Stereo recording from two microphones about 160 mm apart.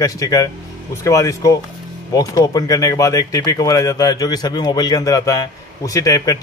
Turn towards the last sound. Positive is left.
turn(degrees=20)  # may be behind; listen again after turning